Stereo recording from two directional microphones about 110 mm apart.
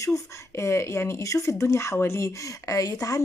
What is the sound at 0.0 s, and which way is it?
Speech, 25° left (ahead or behind).